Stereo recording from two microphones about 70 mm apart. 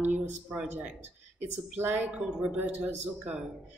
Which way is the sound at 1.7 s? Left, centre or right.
Right.